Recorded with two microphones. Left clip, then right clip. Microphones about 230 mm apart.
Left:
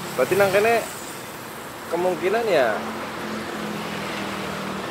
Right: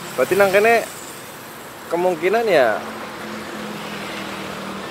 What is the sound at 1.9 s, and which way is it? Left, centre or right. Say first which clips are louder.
Speech: right 4 dB; right.